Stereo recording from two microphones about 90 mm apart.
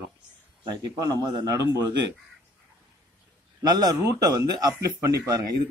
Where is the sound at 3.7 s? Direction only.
45° right (ahead or behind).